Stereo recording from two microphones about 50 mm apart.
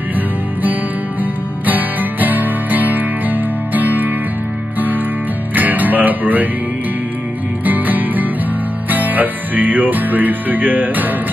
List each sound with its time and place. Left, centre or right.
1.7 s music: right
5.5 s music: right
7.6 s music: right